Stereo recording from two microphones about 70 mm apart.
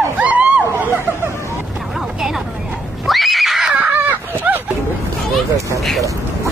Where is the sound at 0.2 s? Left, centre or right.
Right.